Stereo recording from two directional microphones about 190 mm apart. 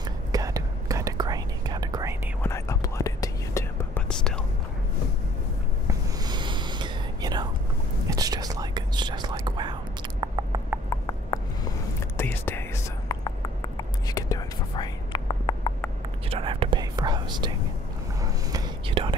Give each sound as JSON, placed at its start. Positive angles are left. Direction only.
{"t": 0.3, "sound": "whispering", "side_deg": -15}
{"t": 2.4, "sound": "whispering", "side_deg": 15}
{"t": 5.9, "sound": "whispering", "side_deg": -20}
{"t": 10.2, "sound": "a sound", "side_deg": -20}
{"t": 10.9, "sound": "a sound", "side_deg": 20}
{"t": 12.2, "sound": "whispering", "side_deg": 10}
{"t": 16.3, "sound": "whispering", "side_deg": -30}